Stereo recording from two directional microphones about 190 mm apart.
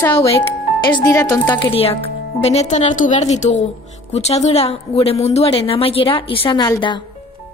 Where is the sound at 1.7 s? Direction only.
30° left (ahead or behind).